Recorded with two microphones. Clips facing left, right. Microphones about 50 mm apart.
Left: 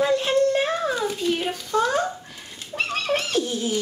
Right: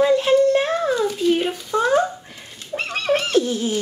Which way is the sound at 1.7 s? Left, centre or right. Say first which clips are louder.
Right 4 dB; right.